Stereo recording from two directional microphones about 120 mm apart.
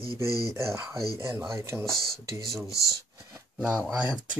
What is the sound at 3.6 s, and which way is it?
Speech, 10° right (ahead or behind).